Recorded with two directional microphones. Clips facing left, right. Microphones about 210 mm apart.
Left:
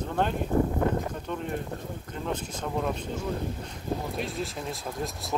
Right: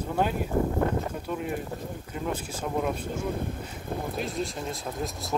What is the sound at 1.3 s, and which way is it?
Speech, 5° right (ahead or behind).